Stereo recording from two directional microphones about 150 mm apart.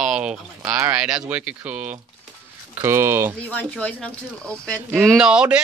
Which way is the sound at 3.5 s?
10° left (ahead or behind).